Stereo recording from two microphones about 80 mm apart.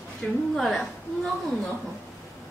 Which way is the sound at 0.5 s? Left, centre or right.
Centre.